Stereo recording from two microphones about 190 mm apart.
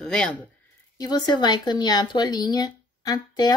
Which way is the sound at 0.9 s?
20° left (ahead or behind).